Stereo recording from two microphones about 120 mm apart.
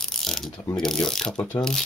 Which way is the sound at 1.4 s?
15° left (ahead or behind).